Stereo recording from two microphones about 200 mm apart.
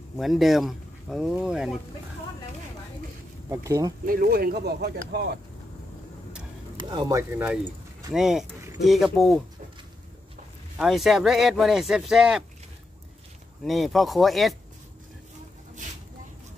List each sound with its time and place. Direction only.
0.2 s speech: centre (ahead or behind)
3.4 s speech: 15° right (ahead or behind)
4.0 s speech: 45° right (ahead or behind)
6.8 s speech: 20° right (ahead or behind); by 9.4 s centre (ahead or behind)
10.8 s speech: centre (ahead or behind)
13.7 s speech: centre (ahead or behind)